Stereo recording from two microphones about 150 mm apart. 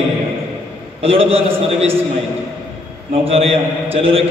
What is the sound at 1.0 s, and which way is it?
Speech, 40° right (ahead or behind).